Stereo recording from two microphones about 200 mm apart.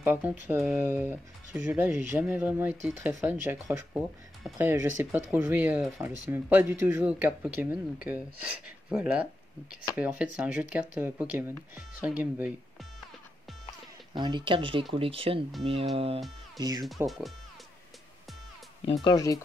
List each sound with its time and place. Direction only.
0.0 s speech: 10° right (ahead or behind)
14.1 s speech: 25° right (ahead or behind)
16.8 s speech: centre (ahead or behind)
19.0 s speech: 15° left (ahead or behind)